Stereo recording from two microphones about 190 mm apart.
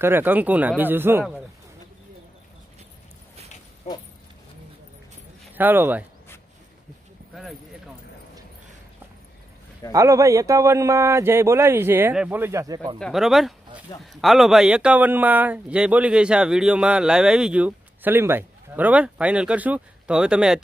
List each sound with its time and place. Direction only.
0.0 s speech: 10° right (ahead or behind)
3.9 s speech: 35° left (ahead or behind)
5.6 s speech: 10° right (ahead or behind)
9.9 s speech: 15° right (ahead or behind)
13.0 s a man's voice: centre (ahead or behind)